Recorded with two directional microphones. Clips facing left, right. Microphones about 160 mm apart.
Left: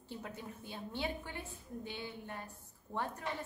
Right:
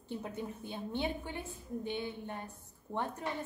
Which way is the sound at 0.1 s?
20° right (ahead or behind).